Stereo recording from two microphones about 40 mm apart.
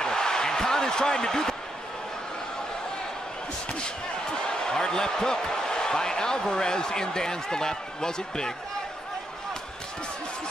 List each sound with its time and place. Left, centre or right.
0.0 s basketball bounce: centre
4.3 s speech: centre